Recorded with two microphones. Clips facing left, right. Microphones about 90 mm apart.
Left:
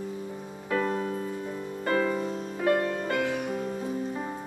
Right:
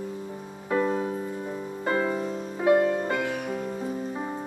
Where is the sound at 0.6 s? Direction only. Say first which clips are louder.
Right 3 dB; 20° right (ahead or behind).